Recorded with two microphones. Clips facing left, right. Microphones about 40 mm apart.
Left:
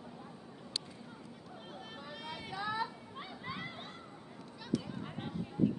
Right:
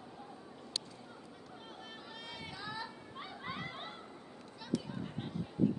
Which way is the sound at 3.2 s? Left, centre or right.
Centre.